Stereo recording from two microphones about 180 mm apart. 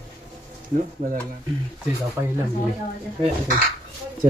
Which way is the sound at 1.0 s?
50° right (ahead or behind).